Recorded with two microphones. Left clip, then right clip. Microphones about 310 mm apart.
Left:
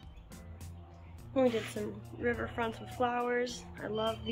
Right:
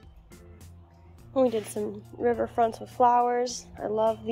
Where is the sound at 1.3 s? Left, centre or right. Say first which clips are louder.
Right 5 dB; centre.